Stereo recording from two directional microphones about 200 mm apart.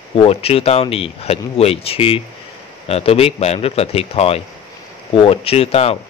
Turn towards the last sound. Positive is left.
turn(degrees=30)  # may be behind; listen again after turning